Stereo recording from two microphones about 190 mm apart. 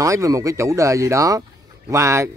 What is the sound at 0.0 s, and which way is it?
Speech, 15° right (ahead or behind).